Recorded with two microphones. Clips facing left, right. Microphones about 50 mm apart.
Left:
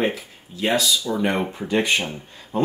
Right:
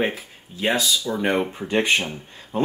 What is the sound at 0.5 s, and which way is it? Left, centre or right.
Speech, right.